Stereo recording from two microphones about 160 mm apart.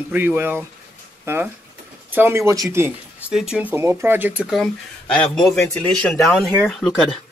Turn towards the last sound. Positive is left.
turn(degrees=5)  # may be behind; listen again after turning